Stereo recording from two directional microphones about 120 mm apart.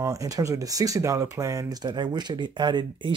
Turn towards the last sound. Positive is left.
turn(degrees=-40)  # may be behind; listen again after turning